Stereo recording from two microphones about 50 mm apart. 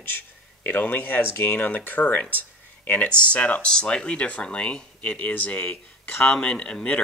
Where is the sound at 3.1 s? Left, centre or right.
Left.